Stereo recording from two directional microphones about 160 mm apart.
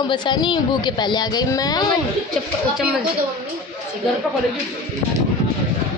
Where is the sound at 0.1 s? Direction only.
30° left (ahead or behind).